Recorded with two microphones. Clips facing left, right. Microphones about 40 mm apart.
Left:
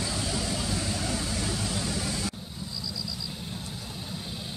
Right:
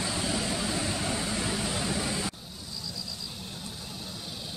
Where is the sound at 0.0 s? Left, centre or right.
Right.